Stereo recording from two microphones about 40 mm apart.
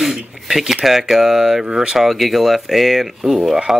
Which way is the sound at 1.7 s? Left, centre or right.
Centre.